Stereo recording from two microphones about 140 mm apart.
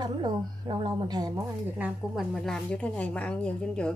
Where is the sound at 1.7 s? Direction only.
10° right (ahead or behind); by 3.9 s 5° left (ahead or behind).